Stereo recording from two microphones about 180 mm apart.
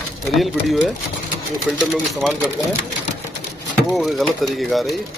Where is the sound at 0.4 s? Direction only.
Centre (ahead or behind).